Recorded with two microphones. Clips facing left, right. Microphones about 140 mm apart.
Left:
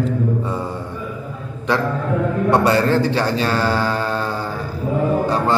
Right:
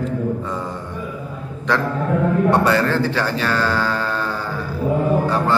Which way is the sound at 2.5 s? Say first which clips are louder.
Left 2 dB; 15° left (ahead or behind).